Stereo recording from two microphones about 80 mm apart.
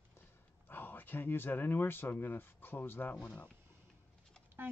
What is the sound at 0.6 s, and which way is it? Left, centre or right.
Speech, left.